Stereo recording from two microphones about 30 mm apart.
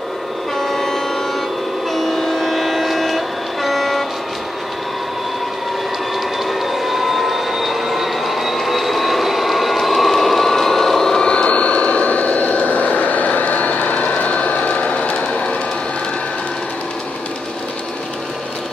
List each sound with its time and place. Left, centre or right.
0.6 s train: centre
2.2 s vehicle: centre
6.4 s train: centre
11.2 s vehicle: left
15.1 s train: left